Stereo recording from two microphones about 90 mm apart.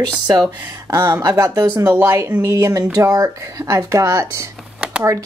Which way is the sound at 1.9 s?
25° right (ahead or behind).